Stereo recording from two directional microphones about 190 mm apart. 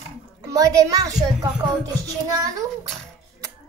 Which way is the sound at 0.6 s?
20° right (ahead or behind).